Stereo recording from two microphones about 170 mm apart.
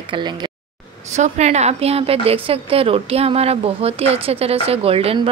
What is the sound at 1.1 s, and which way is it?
A woman's voice, 40° right (ahead or behind).